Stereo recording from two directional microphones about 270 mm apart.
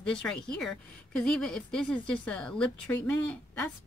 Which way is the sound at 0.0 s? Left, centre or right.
Centre.